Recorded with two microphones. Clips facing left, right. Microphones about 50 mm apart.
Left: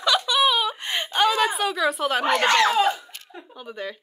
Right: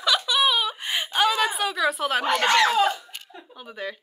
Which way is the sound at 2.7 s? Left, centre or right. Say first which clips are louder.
Left 1 dB; left.